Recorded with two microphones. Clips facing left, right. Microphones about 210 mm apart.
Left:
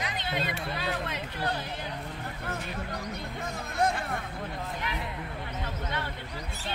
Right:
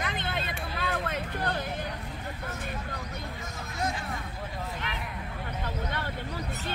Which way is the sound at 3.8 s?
60° left (ahead or behind).